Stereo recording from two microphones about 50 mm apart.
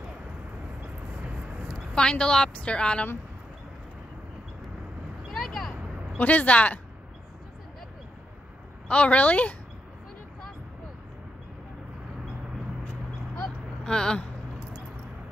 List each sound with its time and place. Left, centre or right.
2.0 s speech: centre
5.3 s a sound: centre
6.1 s speech: left
8.8 s speech: left
13.8 s speech: centre